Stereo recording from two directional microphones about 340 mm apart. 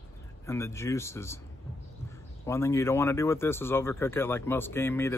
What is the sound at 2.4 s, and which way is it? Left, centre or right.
Speech, centre.